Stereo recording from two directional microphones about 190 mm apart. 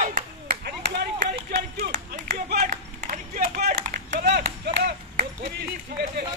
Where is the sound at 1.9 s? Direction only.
40° right (ahead or behind).